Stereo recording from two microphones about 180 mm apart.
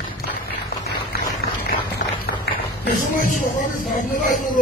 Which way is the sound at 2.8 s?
45° left (ahead or behind).